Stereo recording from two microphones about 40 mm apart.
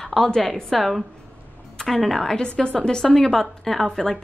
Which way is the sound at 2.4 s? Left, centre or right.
Left.